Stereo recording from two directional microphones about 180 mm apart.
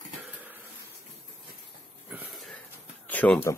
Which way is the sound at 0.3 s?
10° right (ahead or behind).